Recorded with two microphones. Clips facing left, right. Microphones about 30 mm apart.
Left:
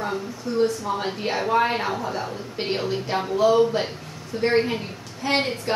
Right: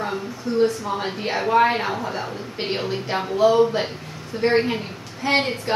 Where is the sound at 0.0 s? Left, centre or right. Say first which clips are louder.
Right 1 dB; centre.